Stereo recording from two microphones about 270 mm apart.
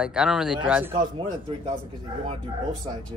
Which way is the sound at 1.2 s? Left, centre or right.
Centre.